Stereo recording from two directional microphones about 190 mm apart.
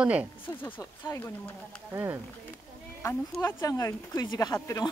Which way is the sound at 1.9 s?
15° right (ahead or behind).